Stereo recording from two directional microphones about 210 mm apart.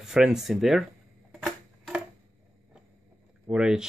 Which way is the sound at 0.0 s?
5° right (ahead or behind).